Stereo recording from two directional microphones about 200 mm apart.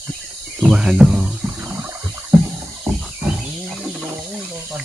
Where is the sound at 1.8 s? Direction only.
15° right (ahead or behind).